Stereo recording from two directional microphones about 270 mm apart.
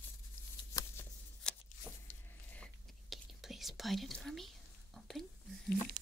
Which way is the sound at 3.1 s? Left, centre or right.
Centre.